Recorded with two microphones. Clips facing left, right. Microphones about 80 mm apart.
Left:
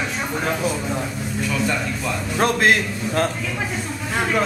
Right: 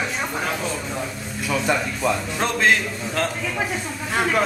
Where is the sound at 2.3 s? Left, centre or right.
Centre.